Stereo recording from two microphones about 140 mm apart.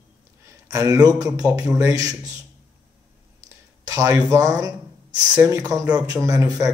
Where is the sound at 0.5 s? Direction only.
20° right (ahead or behind).